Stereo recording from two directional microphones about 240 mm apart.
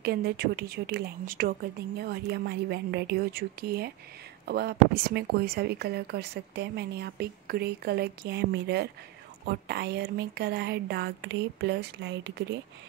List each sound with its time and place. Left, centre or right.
0.0 s speech: right